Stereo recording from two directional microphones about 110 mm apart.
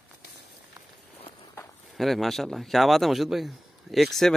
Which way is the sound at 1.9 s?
Centre (ahead or behind).